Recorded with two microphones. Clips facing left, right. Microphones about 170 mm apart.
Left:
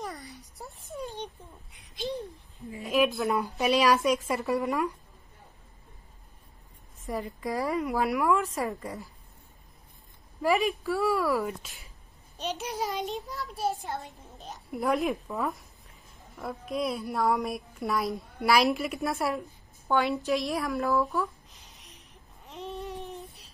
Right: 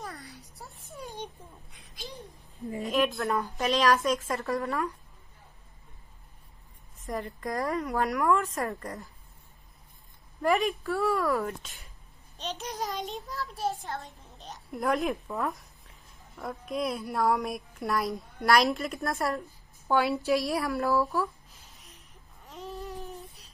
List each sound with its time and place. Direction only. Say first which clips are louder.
0.0 s a sound: left 3 dB; centre (ahead or behind)
2.9 s speech: left 2 dB; 5° left (ahead or behind)
7.1 s speech: left 1 dB; 5° left (ahead or behind)
10.4 s speech: even; 5° left (ahead or behind)
13.8 s speech: left 2 dB; 15° left (ahead or behind)
14.4 s speech: left 1 dB; centre (ahead or behind)
21.7 s a sound: left 1 dB; centre (ahead or behind)